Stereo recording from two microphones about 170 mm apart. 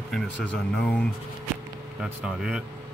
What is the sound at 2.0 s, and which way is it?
Speech, 5° right (ahead or behind).